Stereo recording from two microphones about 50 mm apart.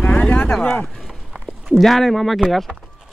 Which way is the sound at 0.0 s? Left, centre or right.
Left.